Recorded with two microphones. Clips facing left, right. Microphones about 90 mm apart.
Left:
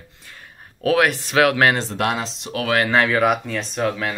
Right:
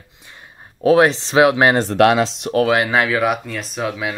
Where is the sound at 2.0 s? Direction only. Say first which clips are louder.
Right 9 dB; 90° right; by 2.5 s 70° right (ahead or behind).